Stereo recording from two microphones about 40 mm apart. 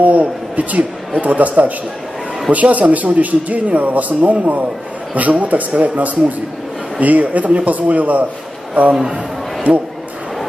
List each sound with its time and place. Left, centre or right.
0.0 s a man's voice: right